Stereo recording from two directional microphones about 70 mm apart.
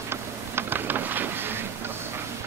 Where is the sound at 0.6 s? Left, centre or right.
Right.